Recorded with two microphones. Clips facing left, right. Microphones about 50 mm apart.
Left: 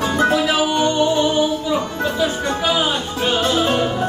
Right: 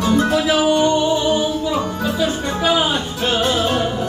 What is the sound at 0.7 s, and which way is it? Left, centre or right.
Music, centre.